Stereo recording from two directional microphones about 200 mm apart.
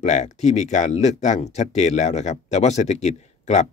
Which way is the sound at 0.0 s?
35° left (ahead or behind).